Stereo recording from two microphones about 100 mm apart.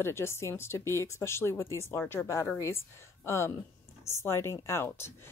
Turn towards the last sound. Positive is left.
turn(degrees=25)  # may be behind; listen again after turning